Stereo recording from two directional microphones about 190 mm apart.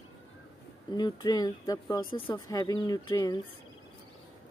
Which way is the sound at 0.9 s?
20° left (ahead or behind).